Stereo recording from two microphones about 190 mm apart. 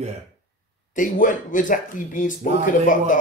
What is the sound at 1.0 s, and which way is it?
Speech, 45° left (ahead or behind).